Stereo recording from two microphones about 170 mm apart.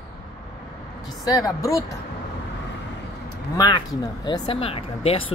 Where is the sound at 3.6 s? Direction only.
25° left (ahead or behind).